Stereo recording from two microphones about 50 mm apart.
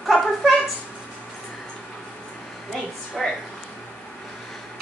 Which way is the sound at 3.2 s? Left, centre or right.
Centre.